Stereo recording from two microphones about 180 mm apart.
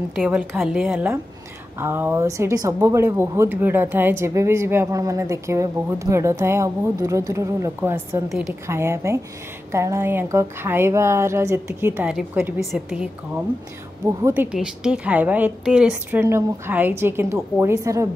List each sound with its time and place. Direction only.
0.3 s a woman's voice: 10° right (ahead or behind)